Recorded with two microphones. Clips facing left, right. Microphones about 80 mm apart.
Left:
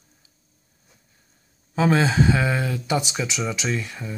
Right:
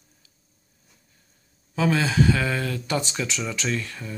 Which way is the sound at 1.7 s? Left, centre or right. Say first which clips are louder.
Left 2 dB; left.